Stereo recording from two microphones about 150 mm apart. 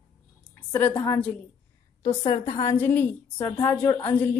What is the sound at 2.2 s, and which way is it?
Speech, 35° left (ahead or behind).